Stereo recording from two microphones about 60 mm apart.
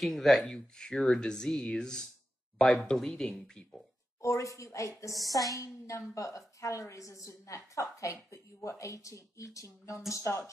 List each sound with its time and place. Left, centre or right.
0.0 s speech: centre
4.2 s speech: left
5.3 s a woman's voice: left
5.6 s speech: left